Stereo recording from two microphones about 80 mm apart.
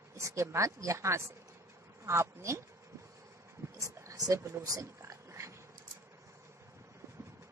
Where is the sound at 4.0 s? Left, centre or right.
Right.